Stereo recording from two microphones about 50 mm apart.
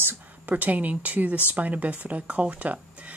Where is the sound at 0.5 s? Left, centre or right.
Right.